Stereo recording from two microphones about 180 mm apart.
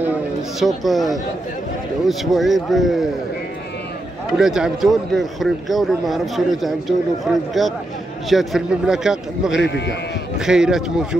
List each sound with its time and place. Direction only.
0.6 s a man's voice: centre (ahead or behind)
4.4 s a man's voice: 5° right (ahead or behind)
9.6 s speech: 70° left (ahead or behind)
10.4 s a man's voice: 5° right (ahead or behind)